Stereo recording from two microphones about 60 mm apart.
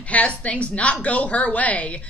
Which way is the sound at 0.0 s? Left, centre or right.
Left.